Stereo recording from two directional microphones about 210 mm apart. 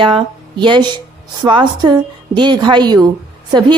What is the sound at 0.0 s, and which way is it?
A woman's voice, 25° right (ahead or behind).